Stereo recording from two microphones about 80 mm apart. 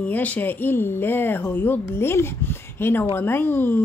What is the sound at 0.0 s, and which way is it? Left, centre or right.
A woman's voice, centre.